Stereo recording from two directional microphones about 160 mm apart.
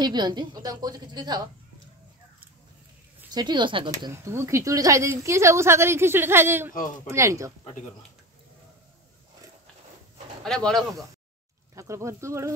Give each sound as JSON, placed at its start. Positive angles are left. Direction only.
{"t": 0.0, "sound": "a woman's voice", "side_deg": -25}
{"t": 3.3, "sound": "a woman's voice", "side_deg": -25}
{"t": 4.1, "sound": "a woman's voice", "side_deg": -15}
{"t": 10.4, "sound": "speech", "side_deg": 5}
{"t": 11.7, "sound": "a woman's voice", "side_deg": -20}